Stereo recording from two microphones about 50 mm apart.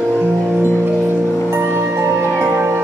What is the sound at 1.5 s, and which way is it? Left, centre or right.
Music, right.